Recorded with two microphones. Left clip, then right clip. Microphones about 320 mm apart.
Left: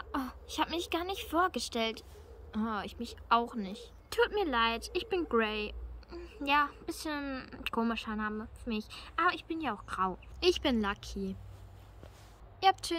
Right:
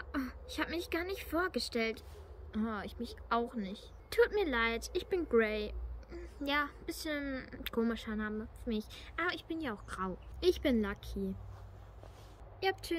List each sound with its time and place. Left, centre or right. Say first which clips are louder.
0.1 s a woman's voice: left 3 dB; centre
7.2 s speech: left 1 dB; left
7.5 s speech: left 3 dB; centre
12.5 s speech: left 8 dB; centre